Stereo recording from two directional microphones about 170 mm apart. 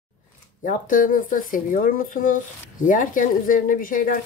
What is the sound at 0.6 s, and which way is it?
Speech, 50° left (ahead or behind).